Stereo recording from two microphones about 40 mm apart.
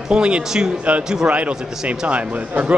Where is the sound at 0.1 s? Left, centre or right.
Right.